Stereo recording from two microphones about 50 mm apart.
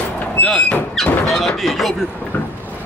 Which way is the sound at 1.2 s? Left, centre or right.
Centre.